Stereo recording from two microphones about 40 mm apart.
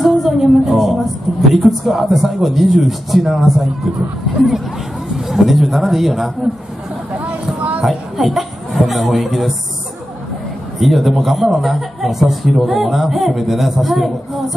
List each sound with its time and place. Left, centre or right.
0.0 s a sound: centre
1.5 s a man's voice: centre
5.3 s a man's voice: centre
7.2 s a sound: right
7.8 s a woman's voice: centre
10.8 s a man's voice: centre